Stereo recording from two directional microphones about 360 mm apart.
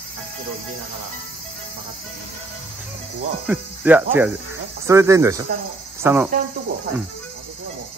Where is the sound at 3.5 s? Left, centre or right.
Centre.